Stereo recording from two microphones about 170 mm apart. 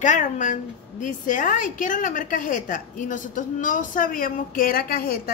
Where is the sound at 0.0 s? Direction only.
45° left (ahead or behind).